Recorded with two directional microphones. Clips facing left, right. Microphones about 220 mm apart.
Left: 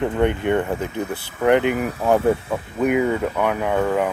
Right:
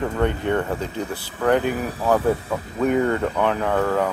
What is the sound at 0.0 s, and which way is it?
Speech, 20° left (ahead or behind).